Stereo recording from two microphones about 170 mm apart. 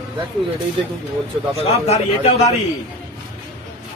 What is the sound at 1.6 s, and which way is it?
Speech, 40° left (ahead or behind).